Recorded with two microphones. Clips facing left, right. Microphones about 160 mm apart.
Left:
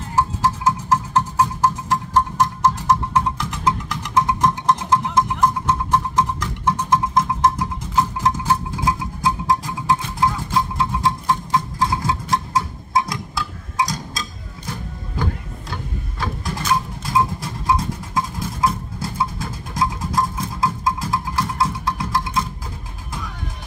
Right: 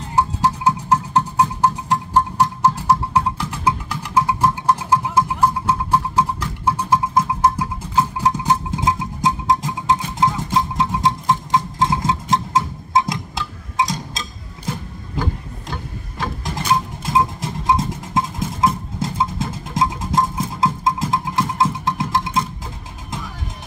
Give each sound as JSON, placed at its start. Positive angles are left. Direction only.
{"t": 0.1, "sound": "music", "side_deg": -15}
{"t": 16.4, "sound": "music", "side_deg": -20}